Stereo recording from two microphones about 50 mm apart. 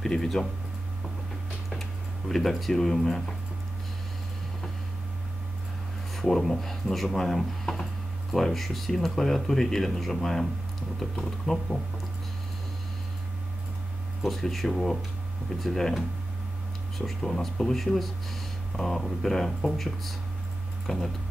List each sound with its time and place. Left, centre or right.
0.0 s speech: centre
1.7 s speech: centre
6.1 s speech: centre
14.2 s speech: centre
17.0 s speech: centre
20.8 s a sound: centre